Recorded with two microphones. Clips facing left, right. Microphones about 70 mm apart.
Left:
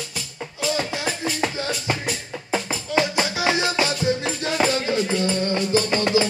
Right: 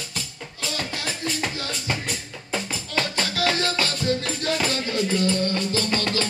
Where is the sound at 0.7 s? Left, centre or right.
Centre.